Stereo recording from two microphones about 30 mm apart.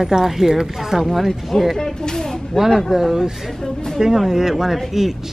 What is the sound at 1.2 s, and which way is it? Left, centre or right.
Speech, centre.